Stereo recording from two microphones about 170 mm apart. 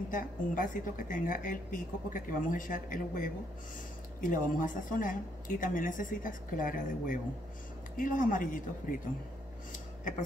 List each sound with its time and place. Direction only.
0.1 s a woman's voice: 50° left (ahead or behind)